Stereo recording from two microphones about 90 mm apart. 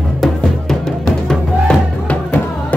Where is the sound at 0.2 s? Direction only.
5° left (ahead or behind).